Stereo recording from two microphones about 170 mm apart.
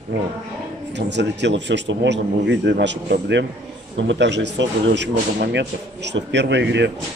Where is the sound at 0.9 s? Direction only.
90° right.